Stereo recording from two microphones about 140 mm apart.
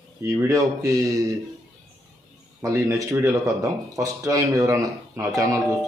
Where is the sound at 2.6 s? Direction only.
25° right (ahead or behind).